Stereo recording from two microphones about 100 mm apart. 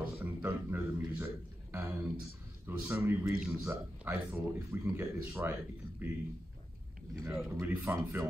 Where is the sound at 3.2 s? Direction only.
10° right (ahead or behind).